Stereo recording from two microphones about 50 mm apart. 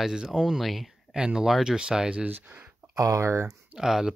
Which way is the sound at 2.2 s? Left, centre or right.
Right.